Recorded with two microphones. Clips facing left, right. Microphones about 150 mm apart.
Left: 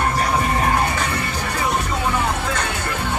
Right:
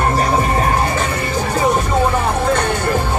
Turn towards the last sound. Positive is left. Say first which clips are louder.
# right 7 dB
turn(degrees=-35)  # may be behind; listen again after turning